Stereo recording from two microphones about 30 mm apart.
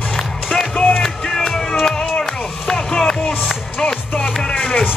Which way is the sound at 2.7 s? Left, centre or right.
Centre.